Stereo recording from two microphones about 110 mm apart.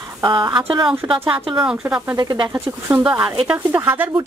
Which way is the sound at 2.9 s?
10° right (ahead or behind).